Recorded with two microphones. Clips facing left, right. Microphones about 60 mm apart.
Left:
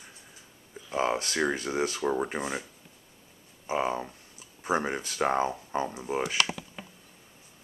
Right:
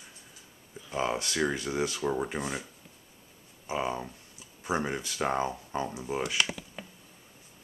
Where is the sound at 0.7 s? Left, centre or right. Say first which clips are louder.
Left 3 dB; centre.